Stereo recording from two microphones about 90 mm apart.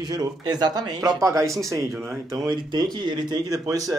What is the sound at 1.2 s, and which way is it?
Speech, 35° right (ahead or behind).